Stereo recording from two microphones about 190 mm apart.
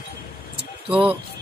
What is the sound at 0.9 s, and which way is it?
Speech, 5° right (ahead or behind).